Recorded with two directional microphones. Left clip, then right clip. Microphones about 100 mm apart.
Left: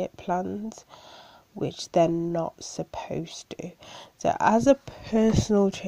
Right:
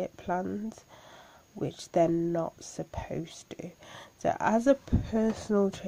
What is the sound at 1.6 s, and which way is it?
Speech, 30° left (ahead or behind).